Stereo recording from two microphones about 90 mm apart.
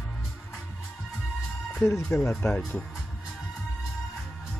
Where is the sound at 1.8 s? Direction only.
25° left (ahead or behind).